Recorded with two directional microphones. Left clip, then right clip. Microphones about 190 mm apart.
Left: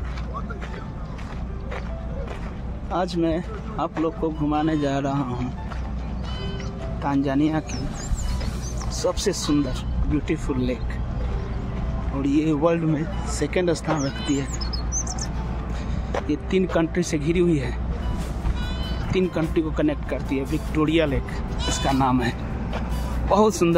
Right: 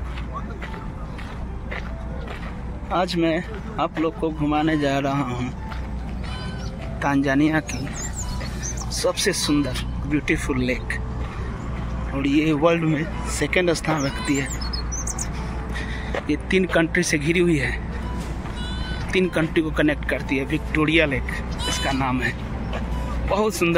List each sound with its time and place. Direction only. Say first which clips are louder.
2.9 s speech: right 2 dB; 5° left (ahead or behind)
7.0 s speech: right 3 dB; centre (ahead or behind)
8.9 s speech: right 2 dB; 10° left (ahead or behind)
12.2 s speech: right 2 dB; centre (ahead or behind)
16.3 s speech: right 3 dB; 5° left (ahead or behind)
19.1 s speech: right 2 dB; 5° left (ahead or behind)
21.8 s speech: left 3 dB; 20° left (ahead or behind)
23.3 s speech: left 2 dB; 25° left (ahead or behind)